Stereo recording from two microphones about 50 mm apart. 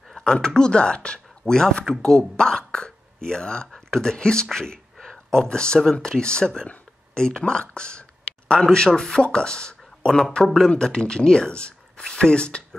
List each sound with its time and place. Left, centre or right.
0.1 s speech: centre